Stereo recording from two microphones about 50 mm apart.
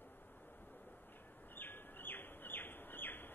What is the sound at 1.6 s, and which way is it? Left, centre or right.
Bird, left.